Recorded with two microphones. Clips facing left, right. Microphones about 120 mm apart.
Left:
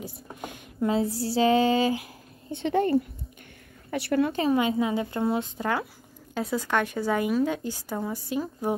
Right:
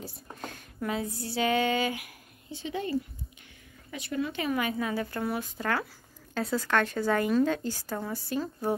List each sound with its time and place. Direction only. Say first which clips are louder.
0.0 s a sound: left 3 dB; 15° left (ahead or behind)
0.8 s speech: left 7 dB; 30° left (ahead or behind)
2.5 s speech: left 8 dB; 60° left (ahead or behind)
3.9 s speech: left 8 dB; 65° left (ahead or behind)
4.3 s a woman's voice: left 6 dB; 30° left (ahead or behind); by 8.7 s 15° left (ahead or behind)